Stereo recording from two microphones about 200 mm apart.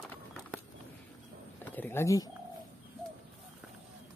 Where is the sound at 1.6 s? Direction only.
10° left (ahead or behind).